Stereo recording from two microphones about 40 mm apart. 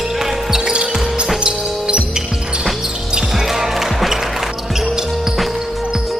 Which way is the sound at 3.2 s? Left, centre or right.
Centre.